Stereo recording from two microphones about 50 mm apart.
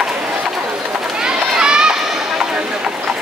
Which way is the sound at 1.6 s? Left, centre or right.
Centre.